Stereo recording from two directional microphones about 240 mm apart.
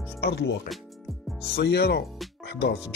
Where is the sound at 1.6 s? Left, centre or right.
Left.